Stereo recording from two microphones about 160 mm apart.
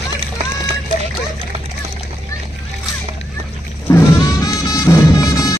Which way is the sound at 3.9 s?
20° left (ahead or behind).